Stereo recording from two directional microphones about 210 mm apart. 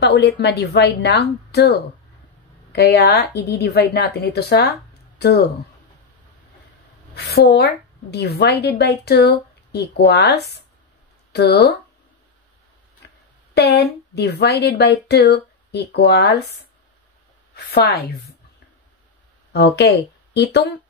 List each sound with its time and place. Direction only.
0.0 s a woman's voice: 55° left (ahead or behind)
7.2 s a woman's voice: 50° left (ahead or behind)
13.6 s a woman's voice: 50° left (ahead or behind)
17.6 s a woman's voice: 50° left (ahead or behind)
19.5 s speech: 55° left (ahead or behind)